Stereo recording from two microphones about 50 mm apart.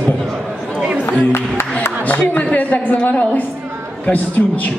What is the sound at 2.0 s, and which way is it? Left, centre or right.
A man's voice, left.